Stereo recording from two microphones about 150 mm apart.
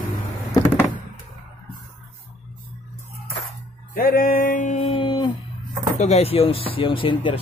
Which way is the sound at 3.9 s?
75° left (ahead or behind).